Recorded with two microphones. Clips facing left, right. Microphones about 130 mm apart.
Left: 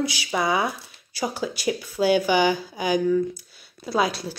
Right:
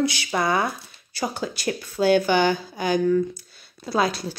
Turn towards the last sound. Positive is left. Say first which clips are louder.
# even
turn(degrees=5)  # may be behind; listen again after turning